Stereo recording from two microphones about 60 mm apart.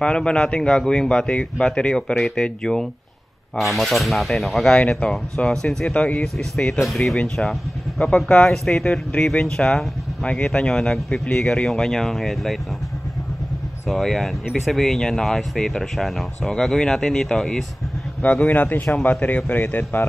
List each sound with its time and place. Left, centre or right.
0.0 s speech: centre
3.5 s speech: centre
4.6 s speech: centre
6.2 s speech: centre
8.3 s speech: centre
13.8 s speech: centre
18.2 s a man's voice: left
19.0 s speech: left